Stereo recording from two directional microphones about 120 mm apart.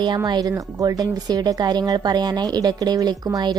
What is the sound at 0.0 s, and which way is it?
A woman's voice, 35° right (ahead or behind).